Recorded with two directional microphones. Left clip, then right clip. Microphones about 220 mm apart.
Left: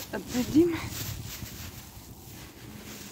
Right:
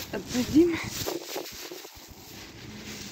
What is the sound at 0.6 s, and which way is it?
Speech, 15° left (ahead or behind).